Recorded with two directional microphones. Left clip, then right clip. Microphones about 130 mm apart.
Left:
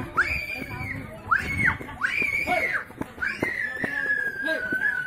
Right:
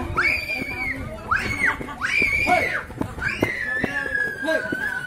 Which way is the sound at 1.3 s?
Centre (ahead or behind).